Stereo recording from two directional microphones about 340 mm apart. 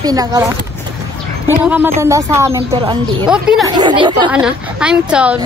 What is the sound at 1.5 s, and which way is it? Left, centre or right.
A woman's voice, centre.